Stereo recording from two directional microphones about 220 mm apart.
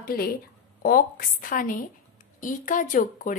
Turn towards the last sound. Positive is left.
turn(degrees=35)  # may be behind; listen again after turning